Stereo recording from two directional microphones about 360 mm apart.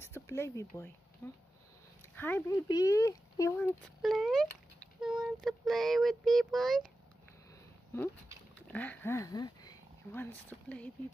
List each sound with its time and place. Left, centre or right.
0.0 s speech: centre
7.9 s speech: centre